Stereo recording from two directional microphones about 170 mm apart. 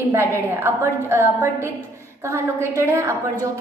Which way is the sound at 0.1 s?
15° right (ahead or behind).